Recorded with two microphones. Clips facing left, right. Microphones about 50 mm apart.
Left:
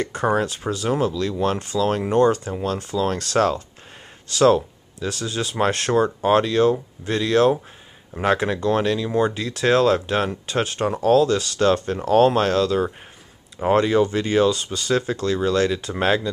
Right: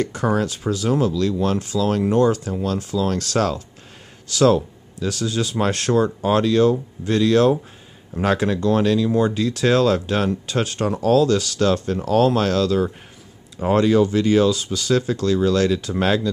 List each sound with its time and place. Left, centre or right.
0.0 s speech: left
2.1 s speech: left; by 16.3 s centre